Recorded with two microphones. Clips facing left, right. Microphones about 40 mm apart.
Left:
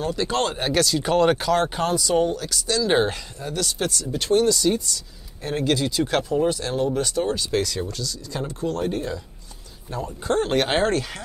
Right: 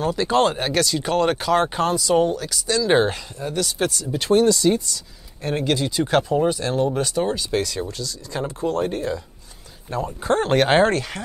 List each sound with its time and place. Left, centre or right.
0.0 s speech: centre
4.8 s speech: centre
8.9 s speech: centre
9.8 s speech: right; by 11.2 s centre